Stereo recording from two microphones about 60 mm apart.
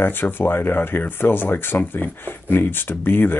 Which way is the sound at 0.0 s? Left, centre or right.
Left.